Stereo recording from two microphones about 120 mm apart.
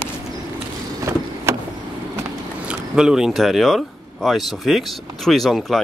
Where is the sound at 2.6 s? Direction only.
5° right (ahead or behind).